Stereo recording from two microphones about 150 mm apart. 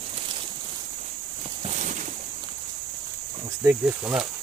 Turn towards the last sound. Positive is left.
turn(degrees=-5)  # may be behind; listen again after turning